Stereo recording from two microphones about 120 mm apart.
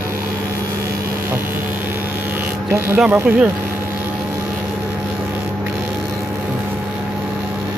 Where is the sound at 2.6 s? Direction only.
20° right (ahead or behind).